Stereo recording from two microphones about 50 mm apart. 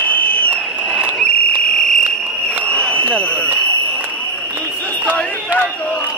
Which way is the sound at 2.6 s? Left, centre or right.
Left.